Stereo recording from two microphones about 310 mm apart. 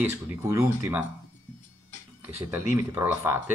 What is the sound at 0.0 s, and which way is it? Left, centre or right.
Speech, centre.